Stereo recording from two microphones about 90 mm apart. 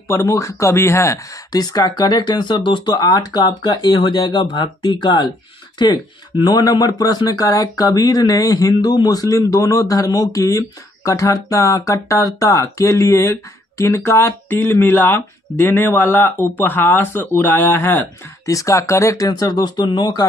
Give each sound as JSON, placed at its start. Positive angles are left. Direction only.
{"t": 0.1, "sound": "speech", "side_deg": 30}